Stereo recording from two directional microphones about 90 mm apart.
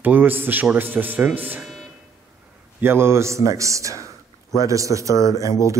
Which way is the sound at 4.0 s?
40° left (ahead or behind).